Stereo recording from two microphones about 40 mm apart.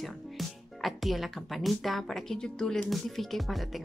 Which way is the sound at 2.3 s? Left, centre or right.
Centre.